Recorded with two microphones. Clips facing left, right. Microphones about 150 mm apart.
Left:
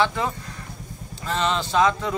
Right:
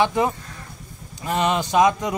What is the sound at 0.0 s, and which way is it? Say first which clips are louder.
A man's voice: right 3 dB; 15° right (ahead or behind).